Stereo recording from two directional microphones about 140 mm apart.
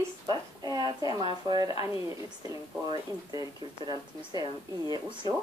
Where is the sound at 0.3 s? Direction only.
30° right (ahead or behind).